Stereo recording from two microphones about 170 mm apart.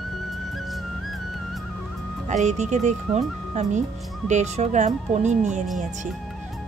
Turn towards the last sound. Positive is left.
turn(degrees=-45)  # may be behind; listen again after turning